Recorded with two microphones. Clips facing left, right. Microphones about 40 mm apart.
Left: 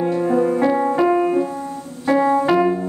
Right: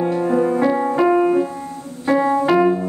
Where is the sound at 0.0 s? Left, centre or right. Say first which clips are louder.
Even; centre.